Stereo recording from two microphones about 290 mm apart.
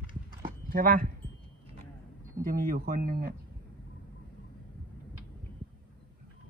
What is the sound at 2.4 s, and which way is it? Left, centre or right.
Speech, right.